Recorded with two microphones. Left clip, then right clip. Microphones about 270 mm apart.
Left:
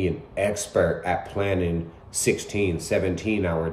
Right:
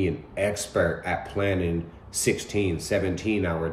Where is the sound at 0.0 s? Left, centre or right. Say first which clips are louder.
Left 1 dB; centre.